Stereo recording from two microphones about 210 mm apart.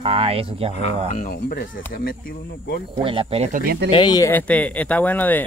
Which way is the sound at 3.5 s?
45° right (ahead or behind).